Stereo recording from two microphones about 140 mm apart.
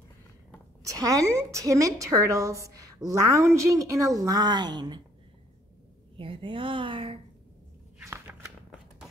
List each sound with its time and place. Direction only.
0.8 s a woman's voice: 25° right (ahead or behind)
6.1 s speech: 40° right (ahead or behind)